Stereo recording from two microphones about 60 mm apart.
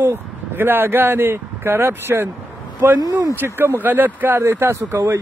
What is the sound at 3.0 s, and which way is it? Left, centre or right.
Speech, right.